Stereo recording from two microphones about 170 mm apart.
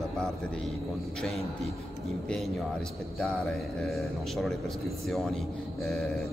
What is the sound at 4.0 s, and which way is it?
Speech, centre (ahead or behind).